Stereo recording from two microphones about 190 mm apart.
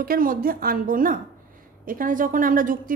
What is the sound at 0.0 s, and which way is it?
A woman's voice, 50° right (ahead or behind).